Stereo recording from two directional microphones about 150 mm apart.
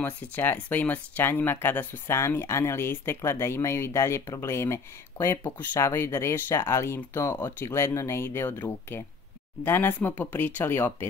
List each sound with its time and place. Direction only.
0.0 s speech: 10° left (ahead or behind)